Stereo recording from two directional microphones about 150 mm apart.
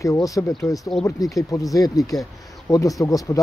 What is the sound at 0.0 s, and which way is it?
Speech, 20° left (ahead or behind).